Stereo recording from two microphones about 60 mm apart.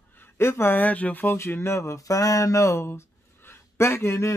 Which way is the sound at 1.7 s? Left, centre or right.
Left.